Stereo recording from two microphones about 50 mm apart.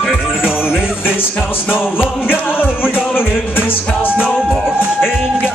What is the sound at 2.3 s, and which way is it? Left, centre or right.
Music, left.